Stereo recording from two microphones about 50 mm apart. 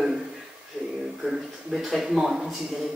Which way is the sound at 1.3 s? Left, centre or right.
Centre.